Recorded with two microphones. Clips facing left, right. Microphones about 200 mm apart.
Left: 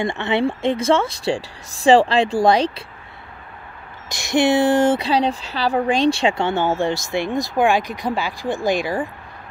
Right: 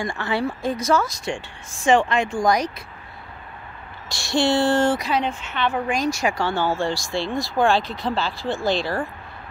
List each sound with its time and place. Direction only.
0.0 s speech: 25° left (ahead or behind)
4.1 s speech: 20° left (ahead or behind)
5.0 s speech: 35° left (ahead or behind); by 9.1 s 15° left (ahead or behind)